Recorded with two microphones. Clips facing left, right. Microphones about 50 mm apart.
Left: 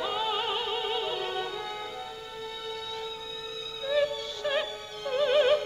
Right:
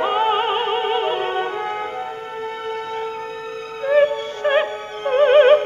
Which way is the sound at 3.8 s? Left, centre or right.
Right.